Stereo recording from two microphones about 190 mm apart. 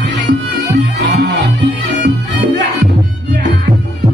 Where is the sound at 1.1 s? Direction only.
65° right (ahead or behind).